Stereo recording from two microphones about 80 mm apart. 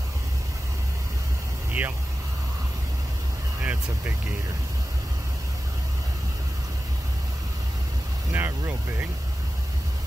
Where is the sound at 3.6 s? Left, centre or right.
Right.